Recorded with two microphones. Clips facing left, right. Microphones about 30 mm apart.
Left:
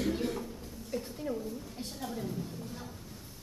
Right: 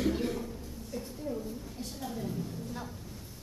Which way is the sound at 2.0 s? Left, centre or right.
Centre.